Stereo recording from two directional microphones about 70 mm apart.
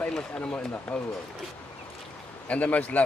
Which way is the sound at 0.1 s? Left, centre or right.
Centre.